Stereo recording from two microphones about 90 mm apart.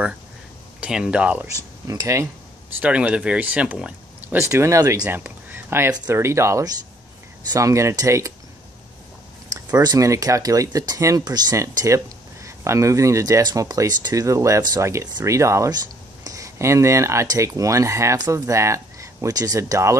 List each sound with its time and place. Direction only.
0.7 s speech: 10° right (ahead or behind)
1.6 s speech: 40° right (ahead or behind)
2.8 s speech: 15° right (ahead or behind)
4.4 s speech: 30° right (ahead or behind)
5.0 s speech: 20° right (ahead or behind); by 8.3 s 40° right (ahead or behind)
9.8 s speech: 40° right (ahead or behind)
11.5 s speech: 35° right (ahead or behind)